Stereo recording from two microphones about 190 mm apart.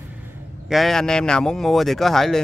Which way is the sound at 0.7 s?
Centre (ahead or behind).